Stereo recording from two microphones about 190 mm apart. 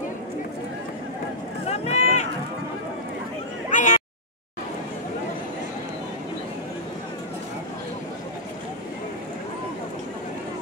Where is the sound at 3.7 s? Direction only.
40° left (ahead or behind).